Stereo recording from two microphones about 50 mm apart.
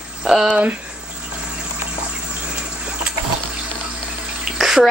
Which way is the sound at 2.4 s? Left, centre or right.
Centre.